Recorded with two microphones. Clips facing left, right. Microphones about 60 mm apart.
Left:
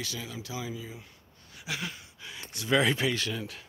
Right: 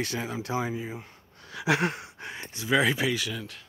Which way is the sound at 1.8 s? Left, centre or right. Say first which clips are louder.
Right 10 dB; right.